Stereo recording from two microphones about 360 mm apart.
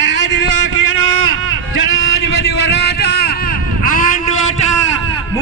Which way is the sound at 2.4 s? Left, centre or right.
Left.